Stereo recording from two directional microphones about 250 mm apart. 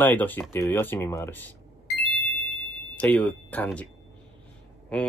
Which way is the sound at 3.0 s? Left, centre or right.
Centre.